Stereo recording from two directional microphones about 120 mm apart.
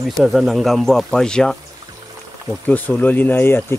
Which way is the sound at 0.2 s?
Centre (ahead or behind).